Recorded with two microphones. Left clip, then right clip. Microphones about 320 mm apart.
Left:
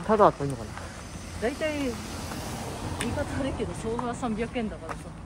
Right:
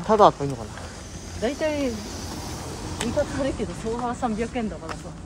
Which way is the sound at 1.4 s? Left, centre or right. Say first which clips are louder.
Right 4 dB; right.